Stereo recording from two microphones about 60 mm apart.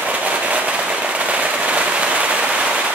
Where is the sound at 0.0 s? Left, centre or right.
Right.